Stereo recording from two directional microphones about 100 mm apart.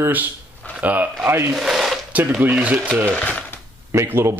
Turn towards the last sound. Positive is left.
turn(degrees=-25)  # may be behind; listen again after turning